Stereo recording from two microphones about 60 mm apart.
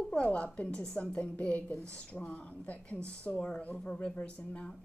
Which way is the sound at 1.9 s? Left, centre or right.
Centre.